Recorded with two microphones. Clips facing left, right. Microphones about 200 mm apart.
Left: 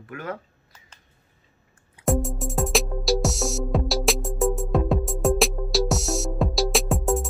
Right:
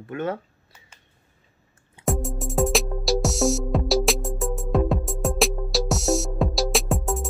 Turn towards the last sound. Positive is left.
turn(degrees=0)  # may be behind; listen again after turning